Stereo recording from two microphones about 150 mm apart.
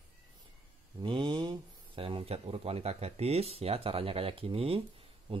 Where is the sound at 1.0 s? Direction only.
35° right (ahead or behind).